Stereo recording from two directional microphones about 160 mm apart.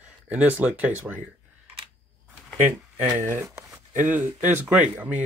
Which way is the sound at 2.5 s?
10° right (ahead or behind).